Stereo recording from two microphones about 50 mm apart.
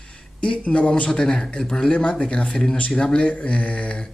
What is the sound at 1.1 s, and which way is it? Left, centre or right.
Speech, centre.